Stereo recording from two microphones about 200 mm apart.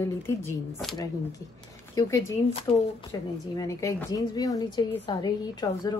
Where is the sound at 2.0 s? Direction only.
15° left (ahead or behind).